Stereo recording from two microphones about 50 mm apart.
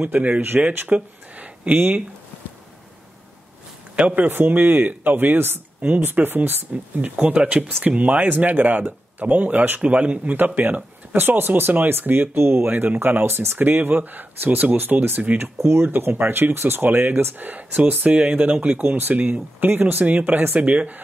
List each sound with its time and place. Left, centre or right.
0.0 s speech: right
3.9 s speech: right
4.5 s speech: right
10.3 s speech: right
15.6 s speech: right
20.1 s speech: right